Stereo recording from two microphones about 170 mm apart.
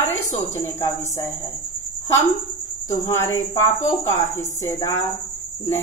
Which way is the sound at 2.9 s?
20° left (ahead or behind).